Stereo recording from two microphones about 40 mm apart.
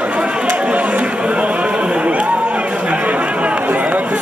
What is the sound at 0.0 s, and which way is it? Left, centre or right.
Chatter, right.